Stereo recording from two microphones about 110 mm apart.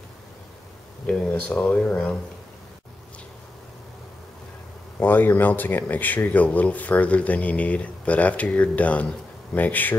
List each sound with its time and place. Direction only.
1.0 s speech: 10° left (ahead or behind)
4.9 s speech: 15° left (ahead or behind)